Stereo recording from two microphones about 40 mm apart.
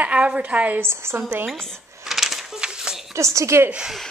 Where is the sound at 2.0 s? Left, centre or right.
Centre.